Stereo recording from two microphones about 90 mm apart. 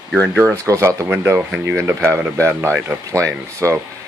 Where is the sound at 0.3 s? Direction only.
25° right (ahead or behind).